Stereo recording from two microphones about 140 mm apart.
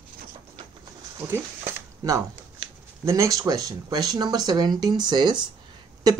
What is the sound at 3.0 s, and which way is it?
Speech, 20° right (ahead or behind).